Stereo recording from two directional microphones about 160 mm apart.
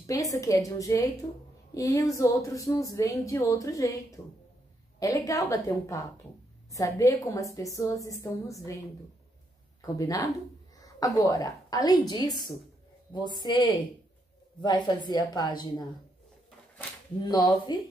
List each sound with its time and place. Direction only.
0.0 s speech: 20° left (ahead or behind)
5.0 s speech: 20° left (ahead or behind)
9.8 s speech: 20° left (ahead or behind)
17.2 s speech: 25° left (ahead or behind)